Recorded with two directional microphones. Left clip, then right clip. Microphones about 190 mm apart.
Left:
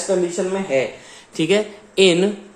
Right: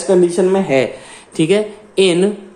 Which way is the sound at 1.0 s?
Centre (ahead or behind).